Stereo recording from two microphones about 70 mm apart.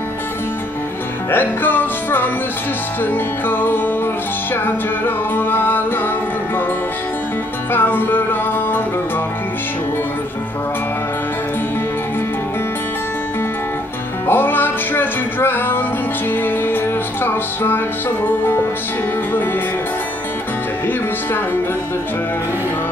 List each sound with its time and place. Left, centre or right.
1.3 s music: left
3.4 s music: left
7.7 s music: left
14.2 s music: left
17.2 s music: left